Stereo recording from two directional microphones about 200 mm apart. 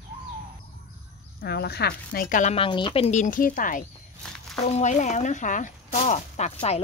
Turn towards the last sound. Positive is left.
turn(degrees=35)  # may be behind; listen again after turning